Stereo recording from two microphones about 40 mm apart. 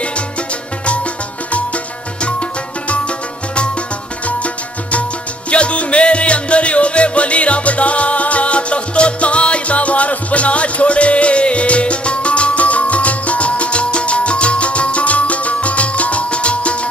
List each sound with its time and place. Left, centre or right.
5.5 s music: left